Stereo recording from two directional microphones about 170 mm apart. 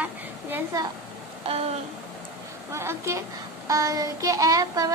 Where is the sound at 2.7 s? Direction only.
15° right (ahead or behind).